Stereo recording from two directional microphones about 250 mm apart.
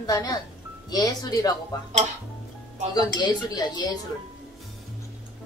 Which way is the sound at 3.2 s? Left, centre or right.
Centre.